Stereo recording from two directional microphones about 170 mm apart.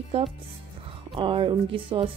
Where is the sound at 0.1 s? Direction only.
40° right (ahead or behind).